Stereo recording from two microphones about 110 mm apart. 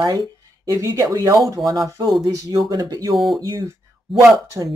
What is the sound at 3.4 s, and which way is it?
Speech, 30° right (ahead or behind).